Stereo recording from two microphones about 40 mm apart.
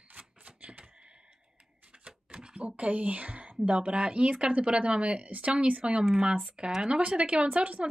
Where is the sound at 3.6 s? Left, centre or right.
Right.